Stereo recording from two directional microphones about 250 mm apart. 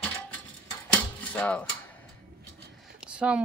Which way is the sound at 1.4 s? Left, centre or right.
Centre.